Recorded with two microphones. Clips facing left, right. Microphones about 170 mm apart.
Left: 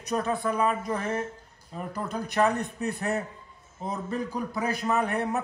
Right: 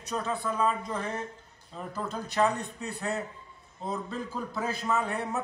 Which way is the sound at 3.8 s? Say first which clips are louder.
Left 3 dB; 15° left (ahead or behind).